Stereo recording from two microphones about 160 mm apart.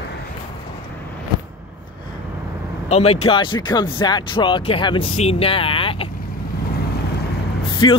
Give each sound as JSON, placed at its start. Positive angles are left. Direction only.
{"t": 2.9, "sound": "speech", "side_deg": 40}
{"t": 7.7, "sound": "vehicle", "side_deg": 30}